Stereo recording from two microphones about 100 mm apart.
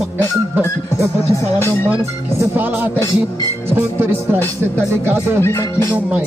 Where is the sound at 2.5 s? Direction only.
20° right (ahead or behind).